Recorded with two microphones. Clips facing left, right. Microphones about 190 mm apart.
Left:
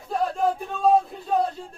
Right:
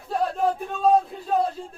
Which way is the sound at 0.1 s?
Centre (ahead or behind).